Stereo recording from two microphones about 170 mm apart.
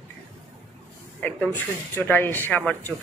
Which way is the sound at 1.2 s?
10° left (ahead or behind).